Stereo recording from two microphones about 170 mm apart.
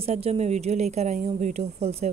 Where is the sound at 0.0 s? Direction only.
35° right (ahead or behind).